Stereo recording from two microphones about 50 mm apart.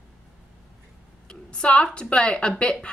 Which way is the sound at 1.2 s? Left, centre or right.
Centre.